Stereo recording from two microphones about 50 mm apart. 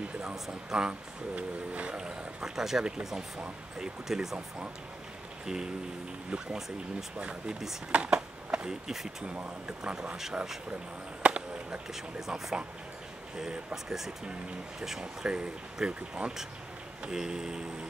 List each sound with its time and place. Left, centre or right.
0.2 s speech: centre
6.3 s speech: centre
7.9 s skateboard: right
8.8 s speech: centre
9.3 s speech: right
11.2 s a sound: right
11.9 s speech: centre
13.8 s speech: centre